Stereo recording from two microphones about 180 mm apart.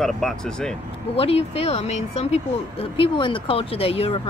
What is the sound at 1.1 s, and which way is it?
Speech, 30° left (ahead or behind).